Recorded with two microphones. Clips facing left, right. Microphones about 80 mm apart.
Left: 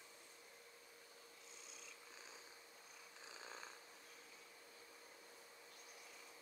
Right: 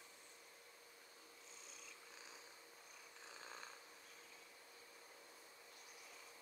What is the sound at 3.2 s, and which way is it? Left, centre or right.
Purr, centre.